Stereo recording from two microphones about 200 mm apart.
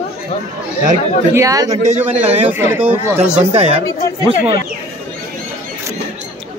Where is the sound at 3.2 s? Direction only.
30° right (ahead or behind).